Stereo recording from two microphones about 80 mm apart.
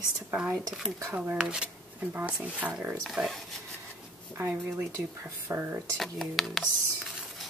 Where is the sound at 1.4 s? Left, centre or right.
Centre.